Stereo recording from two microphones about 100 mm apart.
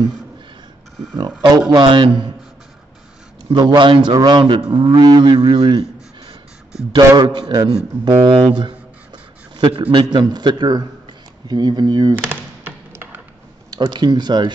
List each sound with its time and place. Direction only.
1.8 s a man's voice: 50° right (ahead or behind)
3.4 s a man's voice: 50° right (ahead or behind)
12.3 s a sound: 20° right (ahead or behind)
13.7 s a man's voice: 45° right (ahead or behind)